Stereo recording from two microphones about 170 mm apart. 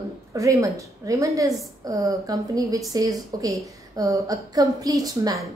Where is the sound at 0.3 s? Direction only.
20° right (ahead or behind).